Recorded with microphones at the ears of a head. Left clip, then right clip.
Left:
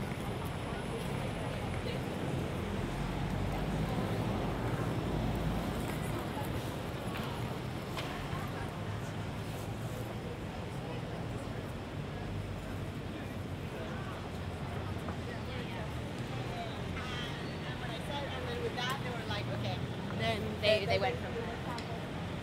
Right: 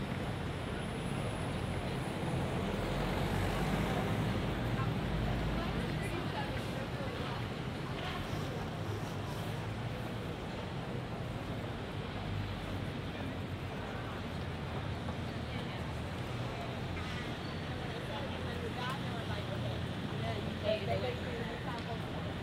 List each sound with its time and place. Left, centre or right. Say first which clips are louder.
20.2 s vehicle: left 6 dB; left